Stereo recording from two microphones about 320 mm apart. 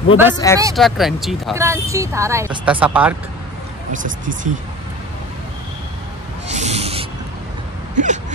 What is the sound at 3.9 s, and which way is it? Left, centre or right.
Speech, right.